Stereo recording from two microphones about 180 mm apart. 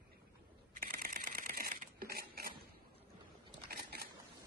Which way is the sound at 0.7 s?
50° right (ahead or behind).